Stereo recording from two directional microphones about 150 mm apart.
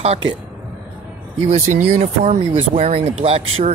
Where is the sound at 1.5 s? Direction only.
50° right (ahead or behind).